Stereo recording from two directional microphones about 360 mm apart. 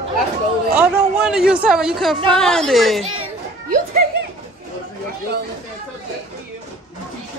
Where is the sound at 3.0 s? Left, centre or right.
Right.